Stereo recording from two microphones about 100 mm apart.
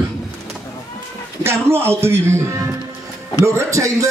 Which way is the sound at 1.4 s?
25° right (ahead or behind).